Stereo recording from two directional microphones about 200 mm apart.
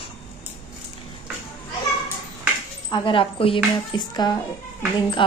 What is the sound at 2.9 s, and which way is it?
Speech, 25° left (ahead or behind).